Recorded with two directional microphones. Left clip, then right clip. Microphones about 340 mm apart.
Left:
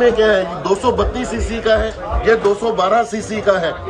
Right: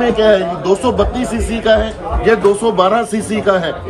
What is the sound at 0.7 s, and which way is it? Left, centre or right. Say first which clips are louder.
A man's voice: right 3 dB; centre.